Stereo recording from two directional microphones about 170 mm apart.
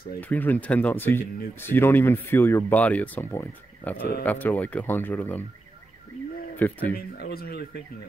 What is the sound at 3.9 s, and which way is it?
Speech, 65° left (ahead or behind).